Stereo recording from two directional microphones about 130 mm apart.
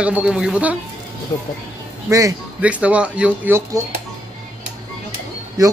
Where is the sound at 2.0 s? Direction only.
25° right (ahead or behind).